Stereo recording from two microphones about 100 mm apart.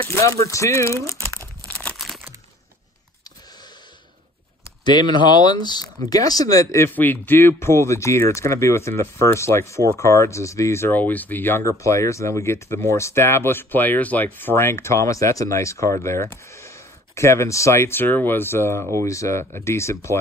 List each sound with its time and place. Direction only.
0.1 s speech: 30° left (ahead or behind)
1.7 s crumpling: 5° left (ahead or behind)
4.8 s speech: 50° left (ahead or behind); by 6.9 s 30° left (ahead or behind)
6.9 s speech: 20° left (ahead or behind)